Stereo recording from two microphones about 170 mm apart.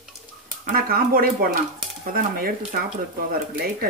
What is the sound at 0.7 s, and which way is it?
Speech, 60° right (ahead or behind).